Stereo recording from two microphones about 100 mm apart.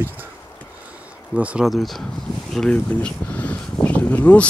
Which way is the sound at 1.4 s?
15° right (ahead or behind).